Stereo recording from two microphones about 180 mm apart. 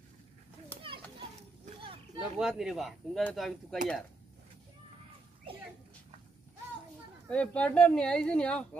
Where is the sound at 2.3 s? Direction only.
Centre (ahead or behind).